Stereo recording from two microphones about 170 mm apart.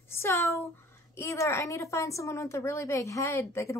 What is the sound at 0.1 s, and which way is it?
A woman's voice, 15° left (ahead or behind).